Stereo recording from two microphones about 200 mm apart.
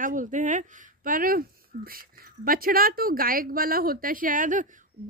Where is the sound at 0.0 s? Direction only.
40° right (ahead or behind).